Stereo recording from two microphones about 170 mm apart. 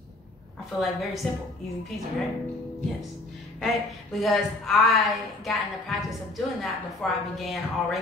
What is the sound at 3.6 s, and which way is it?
Speech, centre (ahead or behind).